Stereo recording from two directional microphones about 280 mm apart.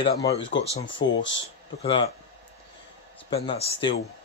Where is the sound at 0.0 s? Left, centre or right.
Centre.